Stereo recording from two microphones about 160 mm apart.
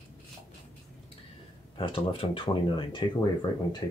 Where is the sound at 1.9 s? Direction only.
35° left (ahead or behind).